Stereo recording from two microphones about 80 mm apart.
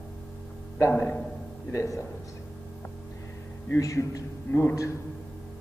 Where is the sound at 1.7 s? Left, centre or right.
Left.